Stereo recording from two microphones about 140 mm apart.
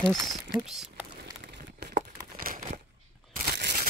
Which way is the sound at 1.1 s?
75° right (ahead or behind).